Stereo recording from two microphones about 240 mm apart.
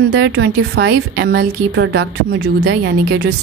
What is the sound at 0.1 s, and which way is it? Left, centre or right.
A woman's voice, right.